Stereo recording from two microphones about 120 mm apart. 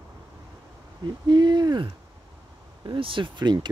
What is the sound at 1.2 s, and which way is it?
Speech, 40° right (ahead or behind).